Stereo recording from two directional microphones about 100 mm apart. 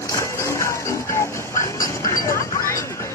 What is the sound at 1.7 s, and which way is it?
Music, 35° left (ahead or behind).